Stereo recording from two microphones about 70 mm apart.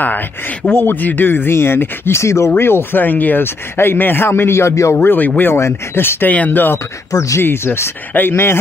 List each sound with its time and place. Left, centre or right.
0.7 s speech: left
2.5 s speech: left
5.0 s speech: left
7.1 s speech: left